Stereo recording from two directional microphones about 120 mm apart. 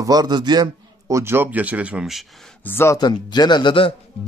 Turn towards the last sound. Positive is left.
turn(degrees=45)  # may be behind; listen again after turning